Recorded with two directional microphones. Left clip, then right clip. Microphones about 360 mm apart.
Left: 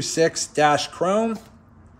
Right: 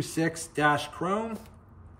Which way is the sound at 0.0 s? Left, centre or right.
Centre.